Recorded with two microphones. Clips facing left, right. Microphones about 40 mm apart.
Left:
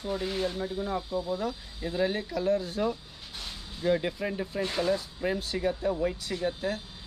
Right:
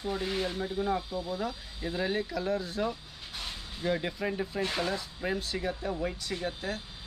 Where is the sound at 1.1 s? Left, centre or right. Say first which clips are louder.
Left 3 dB; centre.